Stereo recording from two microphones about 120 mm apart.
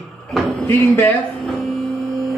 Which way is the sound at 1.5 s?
5° left (ahead or behind).